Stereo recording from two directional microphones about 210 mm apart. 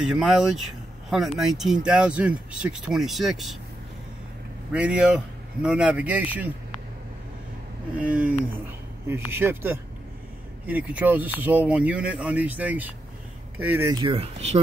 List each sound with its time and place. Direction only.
0.1 s a man's voice: centre (ahead or behind)
4.7 s a man's voice: 5° right (ahead or behind)
8.0 s speech: 5° right (ahead or behind)
13.9 s speech: 25° right (ahead or behind)